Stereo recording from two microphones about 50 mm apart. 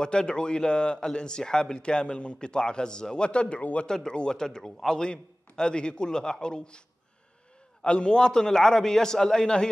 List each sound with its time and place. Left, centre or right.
0.0 s speech: centre
7.8 s speech: centre